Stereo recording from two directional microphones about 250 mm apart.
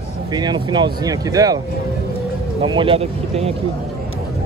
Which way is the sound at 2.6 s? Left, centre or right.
Centre.